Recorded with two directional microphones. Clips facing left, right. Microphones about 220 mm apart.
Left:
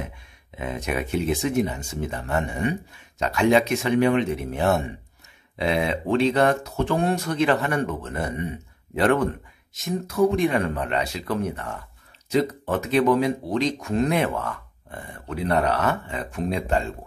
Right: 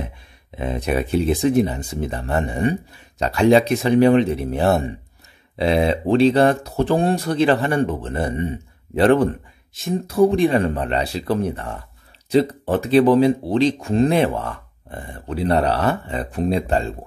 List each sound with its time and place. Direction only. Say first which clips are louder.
0.6 s speech: right 5 dB; 30° right (ahead or behind)